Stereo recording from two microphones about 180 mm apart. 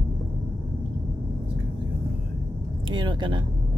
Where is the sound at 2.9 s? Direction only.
25° right (ahead or behind).